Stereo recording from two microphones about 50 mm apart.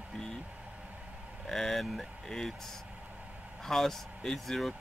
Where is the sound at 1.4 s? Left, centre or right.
Centre.